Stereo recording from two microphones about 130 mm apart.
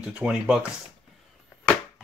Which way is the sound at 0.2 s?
5° right (ahead or behind).